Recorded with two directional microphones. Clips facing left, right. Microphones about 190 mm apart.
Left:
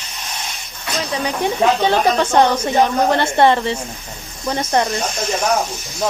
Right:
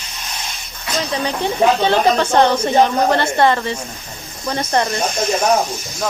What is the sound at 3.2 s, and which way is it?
A woman's voice, 20° left (ahead or behind).